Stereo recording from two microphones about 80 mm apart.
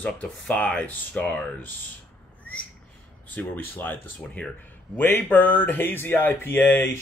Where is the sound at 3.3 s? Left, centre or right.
Left.